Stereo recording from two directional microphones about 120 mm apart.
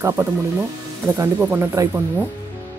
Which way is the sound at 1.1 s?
20° right (ahead or behind).